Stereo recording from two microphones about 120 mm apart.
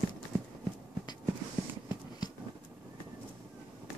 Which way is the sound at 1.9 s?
35° left (ahead or behind).